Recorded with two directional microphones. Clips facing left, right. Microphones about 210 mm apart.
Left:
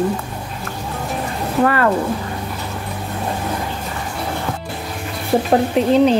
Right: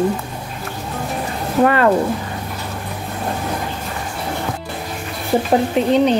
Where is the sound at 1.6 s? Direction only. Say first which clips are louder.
Right 2 dB; 20° right (ahead or behind).